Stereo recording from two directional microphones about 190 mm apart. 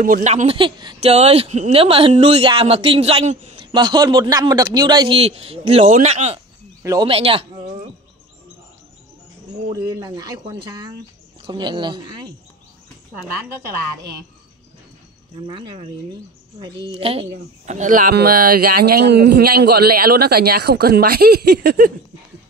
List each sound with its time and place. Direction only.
0.0 s speech: 40° right (ahead or behind)
3.7 s a man's voice: 20° right (ahead or behind)
6.8 s speech: 15° right (ahead or behind)
7.1 s a man's voice: 30° right (ahead or behind)
9.8 s a man's voice: 20° right (ahead or behind)
15.3 s a man's voice: 25° right (ahead or behind); by 21.9 s 50° right (ahead or behind)